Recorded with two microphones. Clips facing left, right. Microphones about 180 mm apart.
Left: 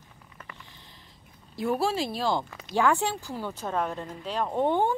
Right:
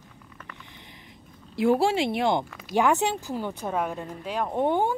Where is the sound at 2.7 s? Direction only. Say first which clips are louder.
Right 2 dB; 20° right (ahead or behind).